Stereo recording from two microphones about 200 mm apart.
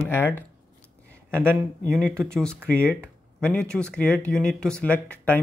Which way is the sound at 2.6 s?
10° right (ahead or behind).